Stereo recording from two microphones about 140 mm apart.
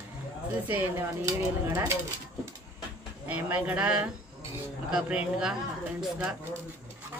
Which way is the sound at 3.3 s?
10° right (ahead or behind).